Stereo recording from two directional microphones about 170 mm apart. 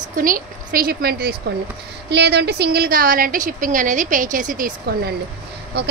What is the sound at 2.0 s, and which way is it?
A woman's voice, 80° right.